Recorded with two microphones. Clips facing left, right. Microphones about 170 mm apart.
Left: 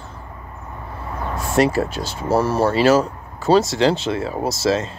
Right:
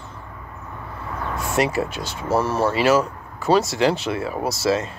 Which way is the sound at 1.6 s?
35° left (ahead or behind).